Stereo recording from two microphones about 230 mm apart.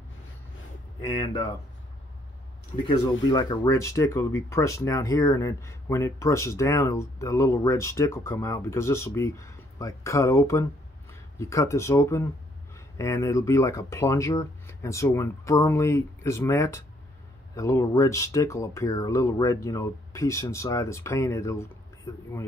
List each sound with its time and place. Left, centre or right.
1.2 s speech: left
3.3 s speech: centre